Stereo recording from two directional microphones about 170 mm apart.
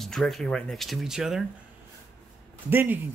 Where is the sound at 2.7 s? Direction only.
10° right (ahead or behind).